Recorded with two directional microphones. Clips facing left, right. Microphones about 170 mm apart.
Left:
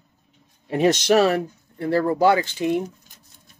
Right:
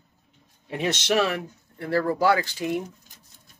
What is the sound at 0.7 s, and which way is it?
Speech, 40° left (ahead or behind).